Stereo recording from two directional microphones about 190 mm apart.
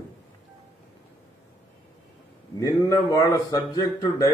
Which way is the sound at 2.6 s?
15° left (ahead or behind).